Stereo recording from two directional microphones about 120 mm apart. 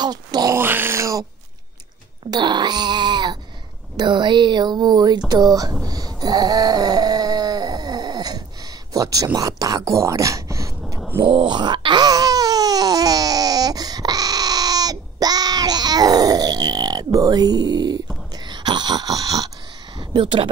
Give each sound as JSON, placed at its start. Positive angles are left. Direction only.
{"t": 0.0, "sound": "speech", "side_deg": -35}
{"t": 0.6, "sound": "speech", "side_deg": -20}
{"t": 2.3, "sound": "speech", "side_deg": -40}
{"t": 5.9, "sound": "a sound", "side_deg": -35}
{"t": 8.9, "sound": "speech", "side_deg": -30}
{"t": 11.1, "sound": "a sound", "side_deg": -45}
{"t": 18.5, "sound": "dog", "side_deg": -40}
{"t": 20.0, "sound": "speech", "side_deg": -40}